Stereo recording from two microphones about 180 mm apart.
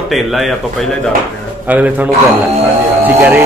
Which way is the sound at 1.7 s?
10° right (ahead or behind).